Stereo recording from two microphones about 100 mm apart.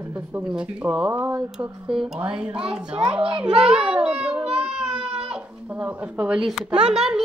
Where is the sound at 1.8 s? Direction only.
5° right (ahead or behind).